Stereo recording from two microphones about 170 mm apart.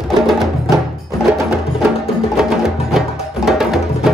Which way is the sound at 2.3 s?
Centre (ahead or behind).